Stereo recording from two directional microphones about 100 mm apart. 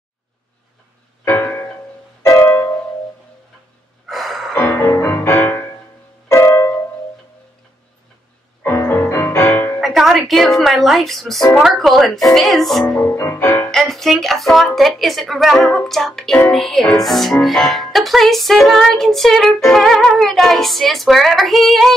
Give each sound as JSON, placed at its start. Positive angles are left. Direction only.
{"t": 1.2, "sound": "music", "side_deg": 25}
{"t": 4.1, "sound": "music", "side_deg": 0}
{"t": 4.7, "sound": "music", "side_deg": 20}
{"t": 8.6, "sound": "music", "side_deg": 25}
{"t": 9.8, "sound": "speech", "side_deg": 0}
{"t": 11.6, "sound": "music", "side_deg": 0}
{"t": 13.0, "sound": "music", "side_deg": 25}
{"t": 13.7, "sound": "music", "side_deg": 5}